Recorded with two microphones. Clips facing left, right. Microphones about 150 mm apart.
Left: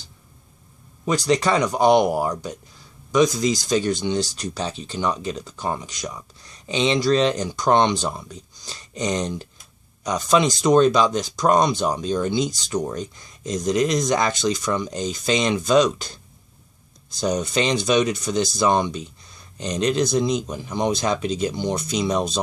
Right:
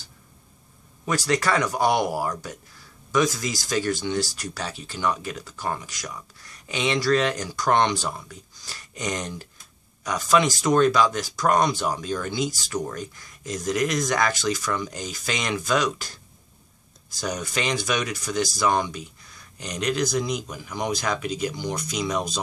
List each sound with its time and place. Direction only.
1.0 s speech: 20° left (ahead or behind)